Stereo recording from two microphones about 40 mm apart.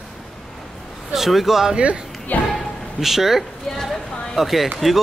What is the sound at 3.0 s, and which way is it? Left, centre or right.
A woman's voice, centre.